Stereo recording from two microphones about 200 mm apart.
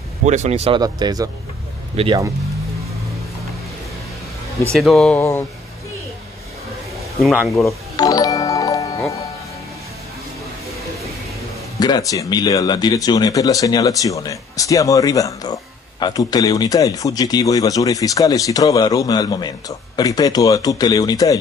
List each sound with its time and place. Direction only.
0.2 s speech: 35° right (ahead or behind)
0.7 s speech: 20° right (ahead or behind)
4.7 s speech: centre (ahead or behind)
7.2 s speech: centre (ahead or behind)
7.9 s music: 20° left (ahead or behind)
11.8 s speech: 20° left (ahead or behind)